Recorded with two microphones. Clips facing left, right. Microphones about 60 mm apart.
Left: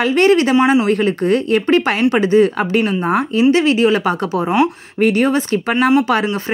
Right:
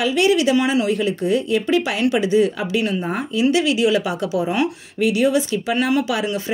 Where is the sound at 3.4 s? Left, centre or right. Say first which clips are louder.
Left 4 dB; left.